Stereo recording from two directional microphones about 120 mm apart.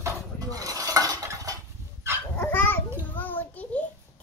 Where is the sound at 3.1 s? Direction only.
15° left (ahead or behind).